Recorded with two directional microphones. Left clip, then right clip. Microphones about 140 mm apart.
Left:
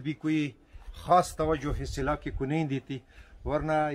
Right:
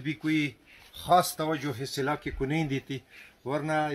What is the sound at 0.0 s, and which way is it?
Speech, 40° left (ahead or behind).